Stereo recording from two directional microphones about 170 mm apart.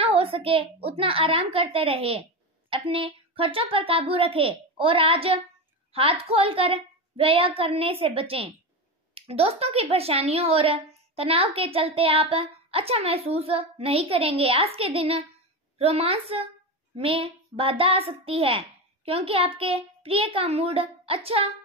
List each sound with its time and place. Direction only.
0.0 s a woman's voice: 35° right (ahead or behind)